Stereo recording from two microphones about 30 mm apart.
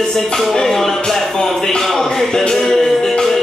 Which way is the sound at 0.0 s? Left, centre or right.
Centre.